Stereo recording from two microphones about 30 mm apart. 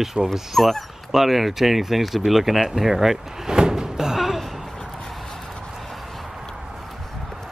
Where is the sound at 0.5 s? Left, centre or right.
Centre.